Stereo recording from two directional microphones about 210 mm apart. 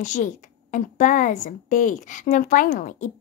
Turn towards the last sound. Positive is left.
turn(degrees=40)  # may be behind; listen again after turning